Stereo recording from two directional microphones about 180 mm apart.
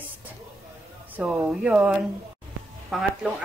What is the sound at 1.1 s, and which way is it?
Speech, 5° right (ahead or behind).